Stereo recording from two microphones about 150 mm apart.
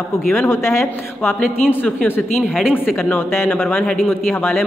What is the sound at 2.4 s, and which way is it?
Speech, centre (ahead or behind).